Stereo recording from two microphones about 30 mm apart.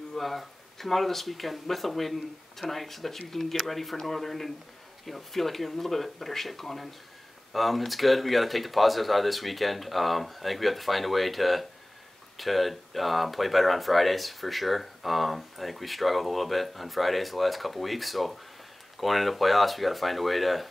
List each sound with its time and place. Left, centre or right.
0.1 s speech: centre